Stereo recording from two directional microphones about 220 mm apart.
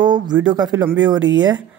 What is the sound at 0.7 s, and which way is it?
Speech, 5° right (ahead or behind).